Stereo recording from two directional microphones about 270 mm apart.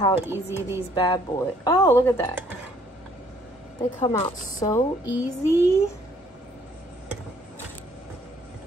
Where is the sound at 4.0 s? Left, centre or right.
Centre.